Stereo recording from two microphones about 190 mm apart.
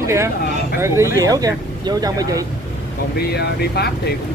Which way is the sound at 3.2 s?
60° left (ahead or behind).